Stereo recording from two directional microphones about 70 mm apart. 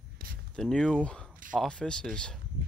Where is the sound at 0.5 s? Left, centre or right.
Centre.